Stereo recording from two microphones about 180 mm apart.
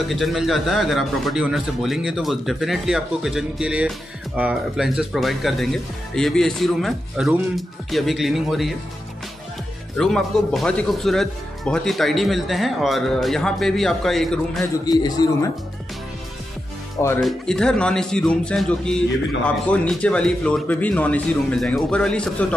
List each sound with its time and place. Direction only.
0.1 s a man's voice: centre (ahead or behind)
9.9 s a man's voice: 5° left (ahead or behind)
14.9 s a man's voice: 20° left (ahead or behind)
17.2 s a man's voice: centre (ahead or behind)